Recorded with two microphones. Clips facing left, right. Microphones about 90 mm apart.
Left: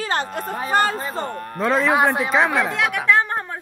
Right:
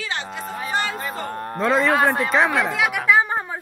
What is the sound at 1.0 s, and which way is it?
Speech, 30° left (ahead or behind).